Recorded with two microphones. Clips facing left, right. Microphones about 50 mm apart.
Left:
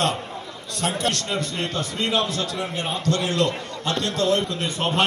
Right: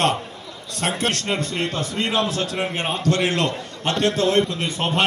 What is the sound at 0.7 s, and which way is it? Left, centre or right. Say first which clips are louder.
A man's voice: right 1 dB; right.